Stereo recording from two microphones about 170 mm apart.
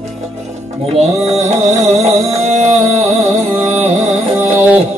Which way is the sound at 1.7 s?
45° right (ahead or behind).